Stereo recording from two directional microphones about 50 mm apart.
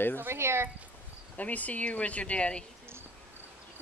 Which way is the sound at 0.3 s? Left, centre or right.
Right.